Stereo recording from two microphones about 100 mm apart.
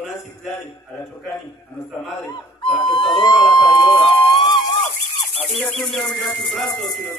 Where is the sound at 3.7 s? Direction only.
50° left (ahead or behind).